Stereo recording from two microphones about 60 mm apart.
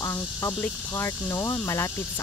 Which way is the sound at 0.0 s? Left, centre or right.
Left.